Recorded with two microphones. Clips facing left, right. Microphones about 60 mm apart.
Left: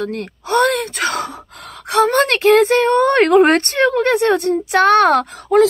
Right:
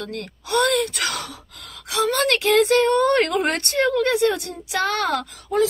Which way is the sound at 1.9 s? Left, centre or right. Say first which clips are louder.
Left 6 dB; left.